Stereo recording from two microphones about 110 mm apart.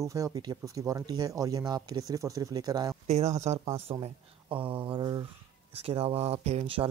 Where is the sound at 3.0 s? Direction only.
80° right; by 5.2 s 40° right (ahead or behind).